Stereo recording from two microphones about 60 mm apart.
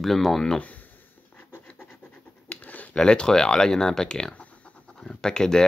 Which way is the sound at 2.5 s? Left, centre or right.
Left.